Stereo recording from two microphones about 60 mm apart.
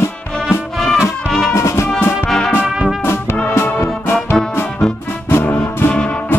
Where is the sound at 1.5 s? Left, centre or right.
Left.